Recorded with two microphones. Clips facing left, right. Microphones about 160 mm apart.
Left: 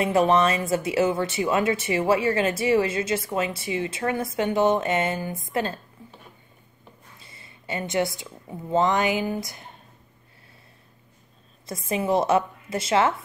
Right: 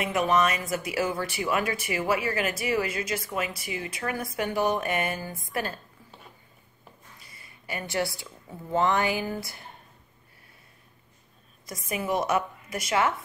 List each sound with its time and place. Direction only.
0.0 s speech: 30° left (ahead or behind)
7.2 s a woman's voice: 25° left (ahead or behind)
11.6 s speech: 25° left (ahead or behind)